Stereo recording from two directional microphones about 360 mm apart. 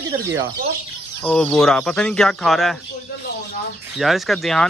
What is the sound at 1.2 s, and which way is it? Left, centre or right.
A man's voice, centre.